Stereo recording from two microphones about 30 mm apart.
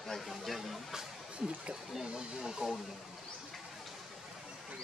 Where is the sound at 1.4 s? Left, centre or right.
Right.